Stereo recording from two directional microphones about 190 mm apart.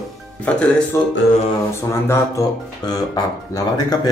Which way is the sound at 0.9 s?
15° left (ahead or behind).